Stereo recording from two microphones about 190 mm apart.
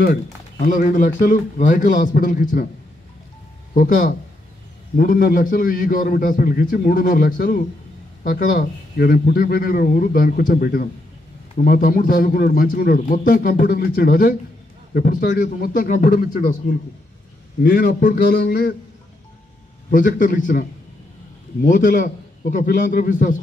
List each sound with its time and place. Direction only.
0.0 s a man's voice: 45° left (ahead or behind)
3.7 s a man's voice: 45° left (ahead or behind)
19.9 s a man's voice: 45° left (ahead or behind)
21.6 s a man's voice: 45° left (ahead or behind)